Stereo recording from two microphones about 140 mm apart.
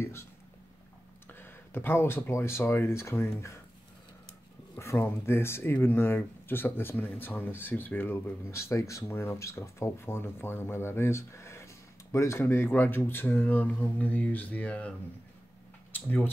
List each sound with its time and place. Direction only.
0.0 s speech: 20° left (ahead or behind)
1.3 s speech: 15° left (ahead or behind)
4.7 s speech: 15° left (ahead or behind)